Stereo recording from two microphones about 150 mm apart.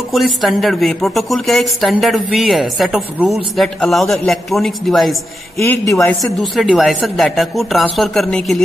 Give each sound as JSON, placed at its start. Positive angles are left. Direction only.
{"t": 0.1, "sound": "speech", "side_deg": 0}
{"t": 5.6, "sound": "a man's voice", "side_deg": 20}
{"t": 6.3, "sound": "speech", "side_deg": 0}